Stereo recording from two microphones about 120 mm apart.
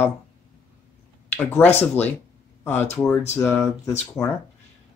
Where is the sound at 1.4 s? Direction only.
15° left (ahead or behind).